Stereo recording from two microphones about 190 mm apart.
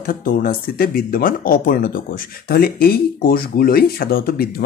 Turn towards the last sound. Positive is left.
turn(degrees=55)  # may be behind; listen again after turning